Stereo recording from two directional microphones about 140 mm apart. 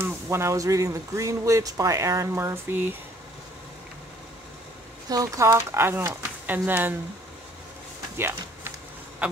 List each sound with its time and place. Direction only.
0.0 s speech: 20° right (ahead or behind)
5.1 s speech: 25° right (ahead or behind)
8.2 s speech: 15° right (ahead or behind)
9.2 s a sound: 10° right (ahead or behind)